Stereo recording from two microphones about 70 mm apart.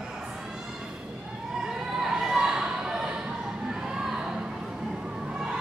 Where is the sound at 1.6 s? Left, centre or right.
Centre.